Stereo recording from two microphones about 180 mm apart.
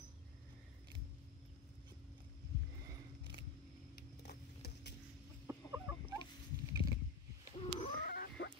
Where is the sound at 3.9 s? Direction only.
65° left (ahead or behind).